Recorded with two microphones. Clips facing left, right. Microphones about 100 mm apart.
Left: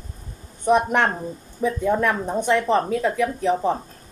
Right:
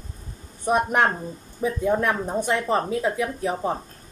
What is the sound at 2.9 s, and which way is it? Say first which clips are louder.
Speech: left 3 dB; 15° right (ahead or behind).